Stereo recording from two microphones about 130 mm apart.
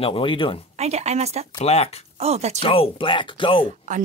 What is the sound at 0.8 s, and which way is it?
Speech, 60° right (ahead or behind).